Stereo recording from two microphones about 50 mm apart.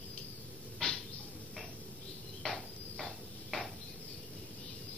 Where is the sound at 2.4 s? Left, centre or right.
Centre.